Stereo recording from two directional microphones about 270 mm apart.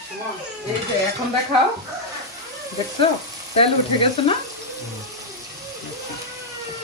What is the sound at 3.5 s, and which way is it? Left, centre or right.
Frying, left.